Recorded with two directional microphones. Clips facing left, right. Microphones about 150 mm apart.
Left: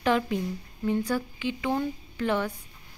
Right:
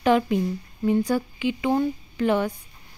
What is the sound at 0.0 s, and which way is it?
A woman's voice, 15° right (ahead or behind).